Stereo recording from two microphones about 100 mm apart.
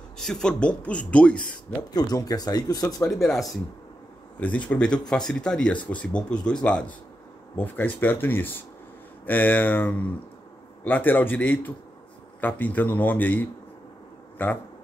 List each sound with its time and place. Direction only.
0.2 s speech: 5° left (ahead or behind)
2.0 s speech: 40° left (ahead or behind)
3.1 s speech: centre (ahead or behind)
4.4 s speech: 15° left (ahead or behind)